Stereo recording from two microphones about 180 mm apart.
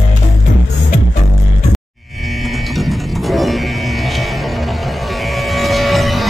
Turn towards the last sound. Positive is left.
turn(degrees=0)  # may be behind; listen again after turning